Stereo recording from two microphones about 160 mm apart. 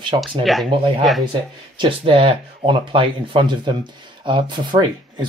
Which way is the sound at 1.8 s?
35° right (ahead or behind).